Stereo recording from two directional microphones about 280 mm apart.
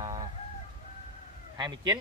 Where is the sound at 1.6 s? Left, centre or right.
Centre.